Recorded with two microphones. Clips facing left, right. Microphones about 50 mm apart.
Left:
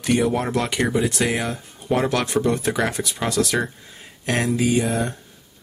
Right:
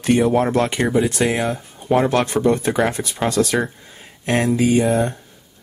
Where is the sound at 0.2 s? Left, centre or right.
Centre.